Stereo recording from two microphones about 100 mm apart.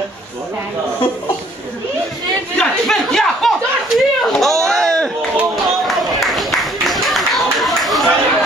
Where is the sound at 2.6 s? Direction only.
Centre (ahead or behind).